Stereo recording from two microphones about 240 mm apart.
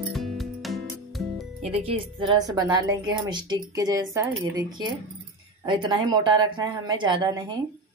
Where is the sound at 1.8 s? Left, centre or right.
Right.